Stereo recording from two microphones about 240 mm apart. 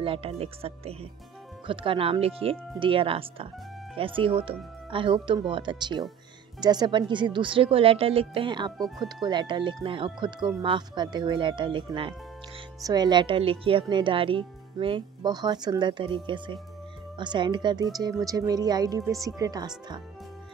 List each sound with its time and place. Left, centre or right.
0.0 s a woman's voice: right
8.7 s speech: centre
9.2 s a woman's voice: centre